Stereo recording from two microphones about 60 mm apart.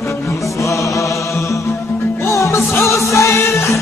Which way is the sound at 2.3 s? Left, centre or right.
Left.